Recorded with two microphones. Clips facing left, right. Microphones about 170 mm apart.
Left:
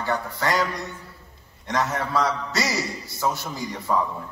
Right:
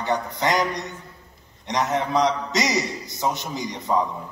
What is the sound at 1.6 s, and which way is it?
A man's voice, 20° right (ahead or behind).